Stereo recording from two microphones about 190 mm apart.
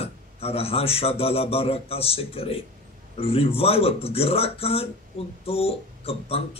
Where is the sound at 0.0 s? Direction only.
30° left (ahead or behind).